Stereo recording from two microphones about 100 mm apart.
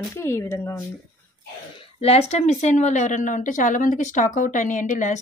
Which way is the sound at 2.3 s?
90° left.